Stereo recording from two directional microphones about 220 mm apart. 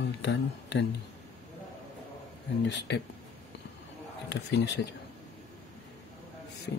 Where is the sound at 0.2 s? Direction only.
50° left (ahead or behind).